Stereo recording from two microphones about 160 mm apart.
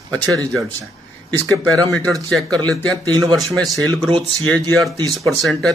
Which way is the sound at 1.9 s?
5° left (ahead or behind).